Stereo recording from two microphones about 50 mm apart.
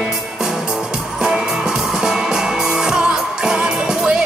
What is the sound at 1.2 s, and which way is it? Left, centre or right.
Music, centre.